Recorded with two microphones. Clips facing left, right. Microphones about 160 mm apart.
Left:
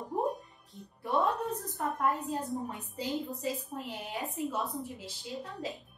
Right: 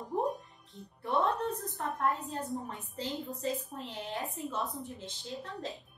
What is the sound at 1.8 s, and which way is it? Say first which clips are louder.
Speech: left 2 dB; 5° left (ahead or behind).